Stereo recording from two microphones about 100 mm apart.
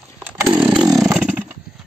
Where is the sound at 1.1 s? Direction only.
25° right (ahead or behind).